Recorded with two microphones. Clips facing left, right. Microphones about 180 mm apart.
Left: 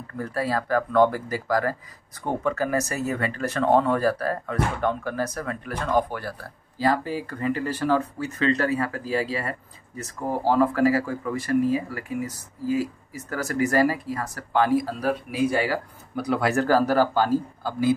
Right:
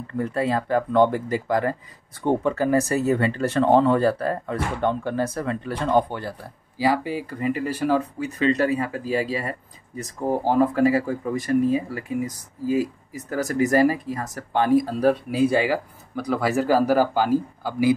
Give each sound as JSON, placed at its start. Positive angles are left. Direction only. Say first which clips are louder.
{"t": 0.2, "sound": "speech", "louder": "right 3 dB", "side_deg": -20}
{"t": 15.0, "sound": "speech", "louder": "right 5 dB", "side_deg": -30}
{"t": 16.2, "sound": "speech", "louder": "even", "side_deg": 0}